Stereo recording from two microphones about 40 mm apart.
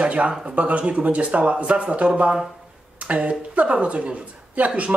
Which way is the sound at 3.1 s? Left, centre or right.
Right.